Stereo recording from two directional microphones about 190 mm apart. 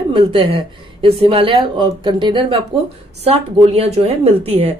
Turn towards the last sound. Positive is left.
turn(degrees=-30)  # may be behind; listen again after turning